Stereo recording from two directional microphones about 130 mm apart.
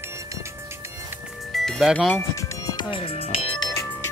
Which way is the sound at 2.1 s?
20° left (ahead or behind).